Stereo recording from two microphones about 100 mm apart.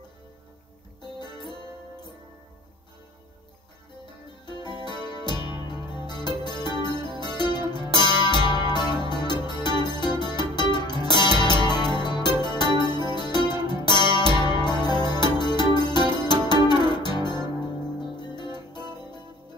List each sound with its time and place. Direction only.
5.2 s music: 50° left (ahead or behind)